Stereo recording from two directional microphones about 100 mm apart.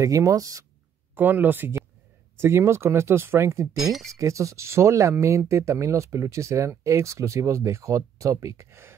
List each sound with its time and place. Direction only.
0.0 s speech: 35° right (ahead or behind)
1.1 s speech: 20° right (ahead or behind)
3.7 s speech: centre (ahead or behind)
4.1 s speech: 30° right (ahead or behind)